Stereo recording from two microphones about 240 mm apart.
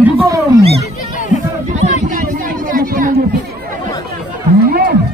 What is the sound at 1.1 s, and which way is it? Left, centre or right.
Chatter, left.